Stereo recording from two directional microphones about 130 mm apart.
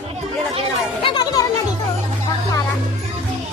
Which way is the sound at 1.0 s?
40° left (ahead or behind).